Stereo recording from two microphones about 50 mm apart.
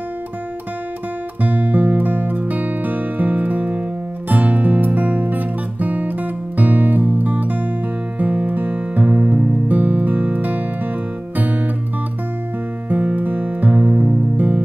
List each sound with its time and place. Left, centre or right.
1.4 s music: right
12.9 s music: right